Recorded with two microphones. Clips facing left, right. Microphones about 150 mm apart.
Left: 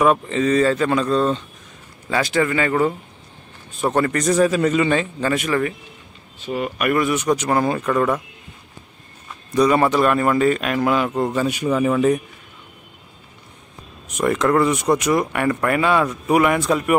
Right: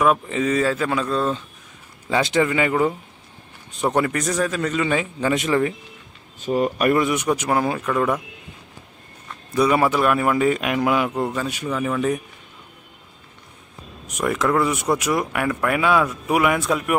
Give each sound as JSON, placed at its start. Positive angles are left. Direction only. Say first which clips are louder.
{"t": 0.3, "sound": "speech", "louder": "left 3 dB", "side_deg": -10}
{"t": 2.0, "sound": "speech", "louder": "even", "side_deg": -20}
{"t": 4.3, "sound": "a man's voice", "louder": "left 6 dB", "side_deg": 5}
{"t": 4.8, "sound": "speech", "louder": "left 2 dB", "side_deg": -10}
{"t": 5.3, "sound": "speech", "louder": "right 2 dB", "side_deg": -20}
{"t": 6.4, "sound": "speech", "louder": "right 3 dB", "side_deg": -35}
{"t": 6.9, "sound": "speech", "louder": "left 2 dB", "side_deg": -20}
{"t": 7.2, "sound": "speech", "louder": "left 2 dB", "side_deg": -10}
{"t": 9.6, "sound": "speech", "louder": "left 2 dB", "side_deg": -5}
{"t": 11.2, "sound": "a man's voice", "louder": "left 5 dB", "side_deg": 15}
{"t": 14.0, "sound": "speech", "louder": "left 3 dB", "side_deg": 0}